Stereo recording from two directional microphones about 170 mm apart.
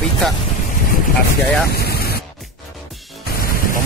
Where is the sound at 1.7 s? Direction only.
70° left (ahead or behind).